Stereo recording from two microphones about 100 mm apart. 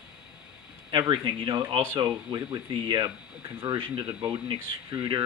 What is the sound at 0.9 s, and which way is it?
Speech, 50° right (ahead or behind).